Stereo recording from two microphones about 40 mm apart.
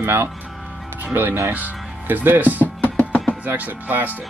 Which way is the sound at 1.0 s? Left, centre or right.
Right.